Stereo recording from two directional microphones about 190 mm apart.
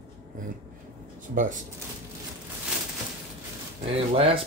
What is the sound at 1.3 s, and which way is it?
Speech, 45° right (ahead or behind).